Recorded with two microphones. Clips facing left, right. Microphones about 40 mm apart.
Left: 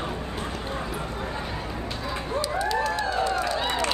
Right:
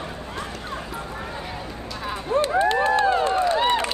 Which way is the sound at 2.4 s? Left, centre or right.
Right.